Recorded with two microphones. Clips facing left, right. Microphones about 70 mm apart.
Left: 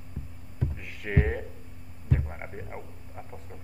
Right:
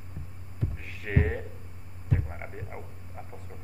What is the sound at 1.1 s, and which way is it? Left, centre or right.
Speech, centre.